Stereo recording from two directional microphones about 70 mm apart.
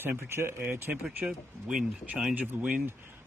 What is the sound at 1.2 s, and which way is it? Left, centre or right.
Speech, centre.